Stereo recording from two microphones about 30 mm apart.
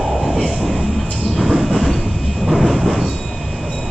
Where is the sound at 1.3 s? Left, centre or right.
Centre.